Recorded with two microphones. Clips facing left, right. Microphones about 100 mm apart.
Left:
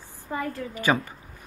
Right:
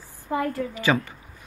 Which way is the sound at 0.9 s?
15° left (ahead or behind).